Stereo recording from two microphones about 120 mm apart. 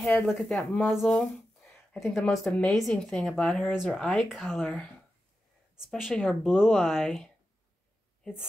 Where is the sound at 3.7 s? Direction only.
5° right (ahead or behind).